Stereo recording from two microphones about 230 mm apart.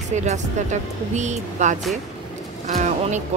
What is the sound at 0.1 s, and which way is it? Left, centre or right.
Speech, right.